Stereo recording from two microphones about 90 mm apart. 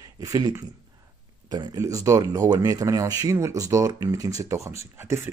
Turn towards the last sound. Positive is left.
turn(degrees=-30)  # may be behind; listen again after turning